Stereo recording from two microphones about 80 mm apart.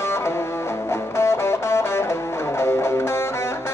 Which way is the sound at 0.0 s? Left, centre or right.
Left.